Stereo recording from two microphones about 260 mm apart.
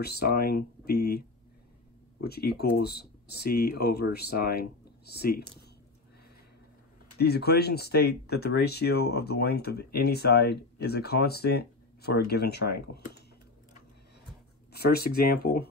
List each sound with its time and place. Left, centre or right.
0.0 s speech: left
7.2 s speech: left
14.7 s speech: left